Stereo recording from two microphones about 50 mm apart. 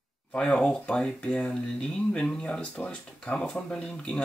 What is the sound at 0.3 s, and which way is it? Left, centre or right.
Speech, centre.